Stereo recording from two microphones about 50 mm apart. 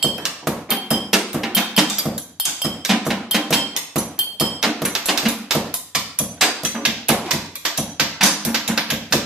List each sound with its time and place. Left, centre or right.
0.0 s music: centre
6.7 s music: right
7.2 s music: centre